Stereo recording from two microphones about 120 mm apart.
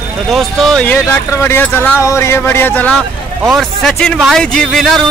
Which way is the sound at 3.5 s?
5° left (ahead or behind).